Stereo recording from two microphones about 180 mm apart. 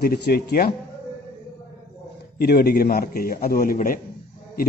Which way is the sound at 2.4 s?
60° left (ahead or behind).